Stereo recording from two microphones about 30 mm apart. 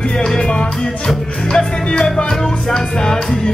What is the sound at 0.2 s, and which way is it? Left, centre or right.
Music, left.